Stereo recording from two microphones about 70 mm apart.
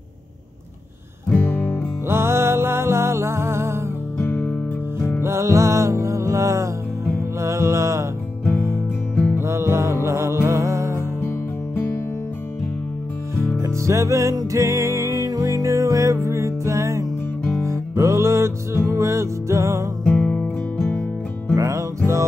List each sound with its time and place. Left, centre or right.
1.3 s music: centre
2.0 s music: right
4.2 s music: left
5.2 s music: right
9.4 s music: right
11.1 s music: left
13.6 s music: right
20.1 s music: centre
21.5 s music: right